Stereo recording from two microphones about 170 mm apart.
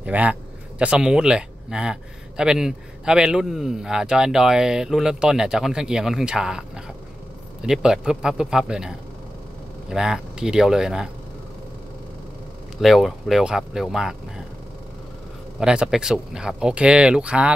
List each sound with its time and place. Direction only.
0.0 s speech: 10° right (ahead or behind)
12.8 s speech: centre (ahead or behind)
15.6 s speech: 5° right (ahead or behind)